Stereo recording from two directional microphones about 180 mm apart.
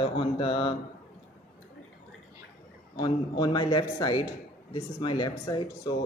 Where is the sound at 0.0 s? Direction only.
30° left (ahead or behind).